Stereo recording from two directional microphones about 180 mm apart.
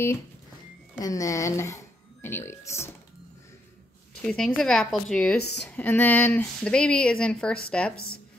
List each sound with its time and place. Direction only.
1.0 s speech: 20° left (ahead or behind)
4.2 s speech: 5° left (ahead or behind)